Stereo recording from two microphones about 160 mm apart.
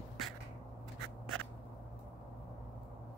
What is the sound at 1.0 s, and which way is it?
Scissors, centre (ahead or behind).